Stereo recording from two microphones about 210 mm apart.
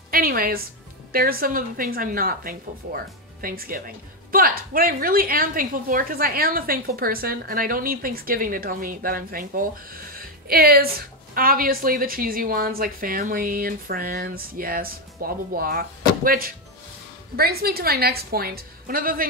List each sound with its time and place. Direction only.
0.1 s a woman's voice: 45° right (ahead or behind)